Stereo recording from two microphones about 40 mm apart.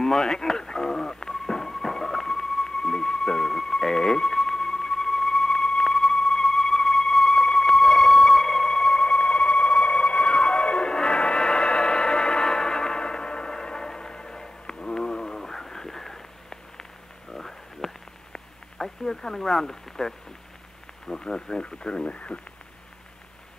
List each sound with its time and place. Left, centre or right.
0.0 s music: centre
17.3 s a sound: centre
21.1 s speech: centre